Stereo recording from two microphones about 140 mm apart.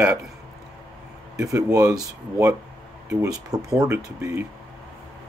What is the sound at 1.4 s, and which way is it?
Speech, 25° right (ahead or behind).